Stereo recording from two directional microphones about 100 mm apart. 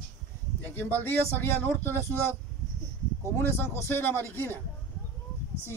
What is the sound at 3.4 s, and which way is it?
A man's voice, 25° left (ahead or behind).